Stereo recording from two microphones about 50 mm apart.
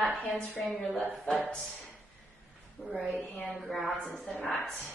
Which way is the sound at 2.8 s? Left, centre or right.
Left.